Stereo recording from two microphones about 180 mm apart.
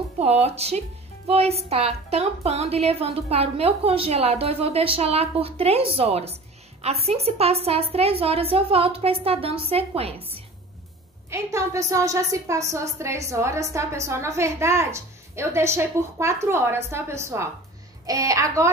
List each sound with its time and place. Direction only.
0.2 s speech: 35° right (ahead or behind)
11.2 s a woman's voice: 15° right (ahead or behind)